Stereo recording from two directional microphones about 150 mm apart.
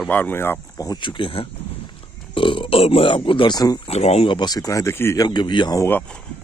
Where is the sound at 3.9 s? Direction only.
45° left (ahead or behind).